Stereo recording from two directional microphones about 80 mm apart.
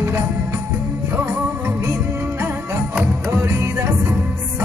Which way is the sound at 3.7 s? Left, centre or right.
Right.